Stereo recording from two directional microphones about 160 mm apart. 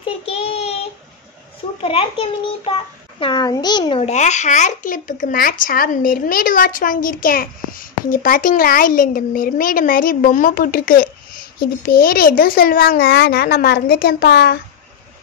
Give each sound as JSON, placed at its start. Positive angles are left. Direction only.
{"t": 0.2, "sound": "child singing", "side_deg": 40}
{"t": 1.8, "sound": "a child's voice", "side_deg": 35}
{"t": 4.0, "sound": "a child's voice", "side_deg": 45}